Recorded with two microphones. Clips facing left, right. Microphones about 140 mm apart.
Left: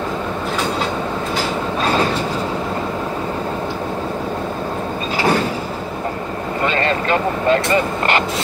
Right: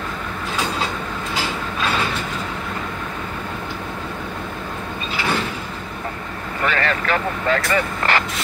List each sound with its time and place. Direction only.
1.8 s mechanisms: 40° left (ahead or behind)
6.6 s vehicle: 20° left (ahead or behind)